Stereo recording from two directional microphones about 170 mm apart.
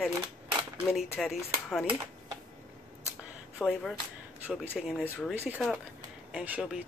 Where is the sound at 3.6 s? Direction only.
5° left (ahead or behind).